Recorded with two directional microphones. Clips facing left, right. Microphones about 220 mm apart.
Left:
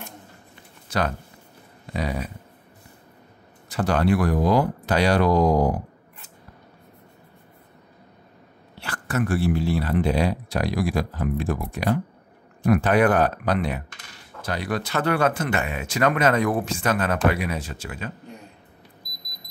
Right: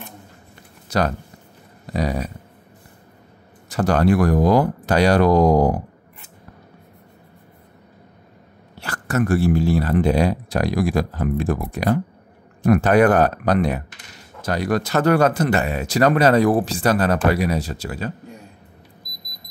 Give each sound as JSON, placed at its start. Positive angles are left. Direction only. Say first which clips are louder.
{"t": 0.8, "sound": "speech", "louder": "right 4 dB", "side_deg": -40}
{"t": 3.7, "sound": "speech", "louder": "right 4 dB", "side_deg": -45}
{"t": 8.7, "sound": "speech", "louder": "right 4 dB", "side_deg": -40}